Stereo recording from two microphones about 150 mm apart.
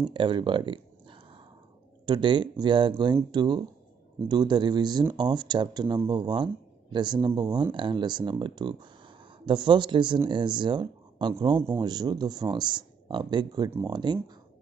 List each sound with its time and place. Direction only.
0.0 s speech: 35° right (ahead or behind)